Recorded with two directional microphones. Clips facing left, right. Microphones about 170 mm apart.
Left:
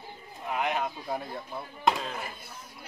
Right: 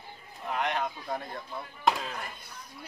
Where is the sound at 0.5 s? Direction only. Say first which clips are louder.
Left 1 dB; 5° left (ahead or behind).